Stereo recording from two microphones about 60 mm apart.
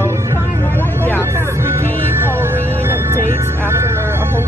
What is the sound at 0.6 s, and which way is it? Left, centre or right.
Speech, left.